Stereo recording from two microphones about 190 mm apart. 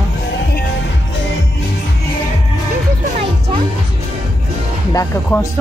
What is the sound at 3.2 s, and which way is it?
Music, 30° right (ahead or behind).